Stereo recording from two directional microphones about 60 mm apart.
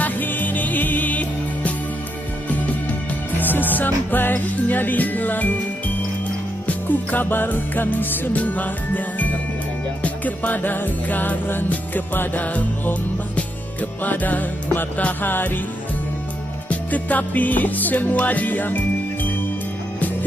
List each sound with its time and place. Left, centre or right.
0.0 s music: left
3.3 s music: left
6.7 s music: left
14.0 s music: left
15.3 s music: left
16.6 s music: left